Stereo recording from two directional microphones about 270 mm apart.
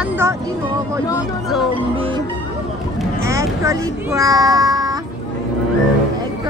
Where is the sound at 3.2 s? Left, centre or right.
Centre.